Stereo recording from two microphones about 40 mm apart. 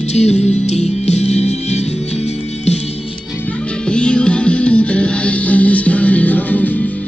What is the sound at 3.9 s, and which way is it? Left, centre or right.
Music, left.